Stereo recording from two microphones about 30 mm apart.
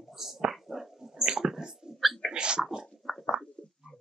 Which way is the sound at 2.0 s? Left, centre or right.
Centre.